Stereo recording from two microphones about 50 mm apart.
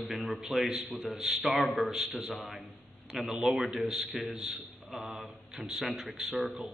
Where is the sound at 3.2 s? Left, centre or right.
Centre.